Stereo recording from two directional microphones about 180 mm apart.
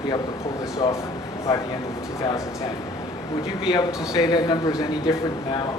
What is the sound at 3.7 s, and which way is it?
A man's voice, 20° left (ahead or behind).